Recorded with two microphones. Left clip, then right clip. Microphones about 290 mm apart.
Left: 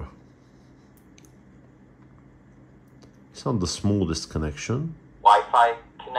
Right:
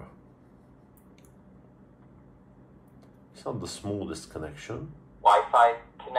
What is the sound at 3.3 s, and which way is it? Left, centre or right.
Speech, left.